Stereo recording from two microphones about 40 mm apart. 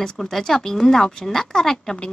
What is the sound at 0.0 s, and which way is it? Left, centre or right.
A woman's voice, centre.